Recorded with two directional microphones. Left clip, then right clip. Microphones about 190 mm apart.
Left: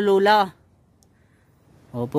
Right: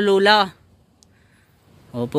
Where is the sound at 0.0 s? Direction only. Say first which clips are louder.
Right 2 dB; 20° left (ahead or behind).